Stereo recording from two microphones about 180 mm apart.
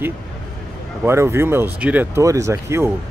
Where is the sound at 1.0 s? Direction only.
15° right (ahead or behind).